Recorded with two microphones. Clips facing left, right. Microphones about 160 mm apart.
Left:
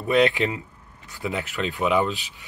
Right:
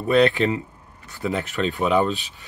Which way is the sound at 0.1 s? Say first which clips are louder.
Right 2 dB; 15° left (ahead or behind).